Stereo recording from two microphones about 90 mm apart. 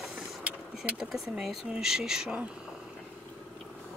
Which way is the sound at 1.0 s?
5° right (ahead or behind).